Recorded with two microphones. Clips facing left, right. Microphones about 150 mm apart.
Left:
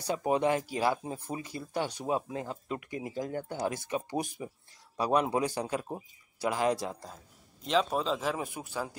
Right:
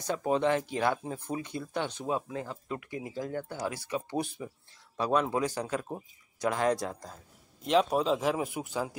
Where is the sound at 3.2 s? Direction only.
40° left (ahead or behind).